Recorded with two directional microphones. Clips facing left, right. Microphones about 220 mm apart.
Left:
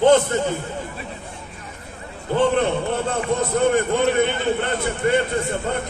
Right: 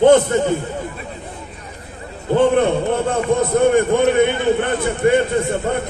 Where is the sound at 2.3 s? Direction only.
50° right (ahead or behind).